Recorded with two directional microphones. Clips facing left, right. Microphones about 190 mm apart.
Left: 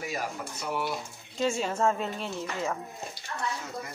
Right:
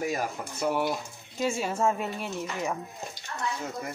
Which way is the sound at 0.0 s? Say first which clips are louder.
Right 4 dB; 45° right (ahead or behind).